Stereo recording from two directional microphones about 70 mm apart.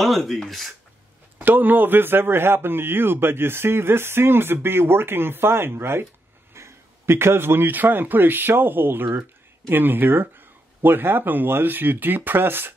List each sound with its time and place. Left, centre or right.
0.0 s speech: centre
1.4 s a man's voice: right